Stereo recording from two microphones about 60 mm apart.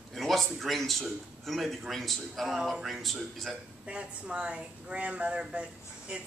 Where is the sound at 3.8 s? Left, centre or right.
Centre.